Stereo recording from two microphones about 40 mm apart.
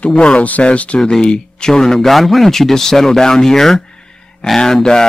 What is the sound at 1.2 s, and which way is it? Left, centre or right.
Speech, left.